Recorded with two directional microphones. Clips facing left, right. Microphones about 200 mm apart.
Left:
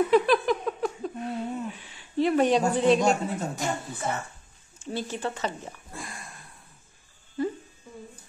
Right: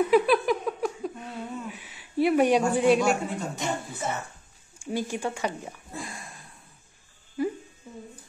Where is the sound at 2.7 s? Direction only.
10° right (ahead or behind).